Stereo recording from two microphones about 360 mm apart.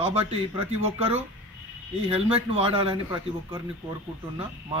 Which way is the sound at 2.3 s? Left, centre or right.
Centre.